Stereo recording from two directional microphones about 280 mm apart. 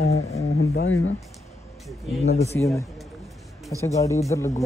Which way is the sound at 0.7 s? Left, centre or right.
Left.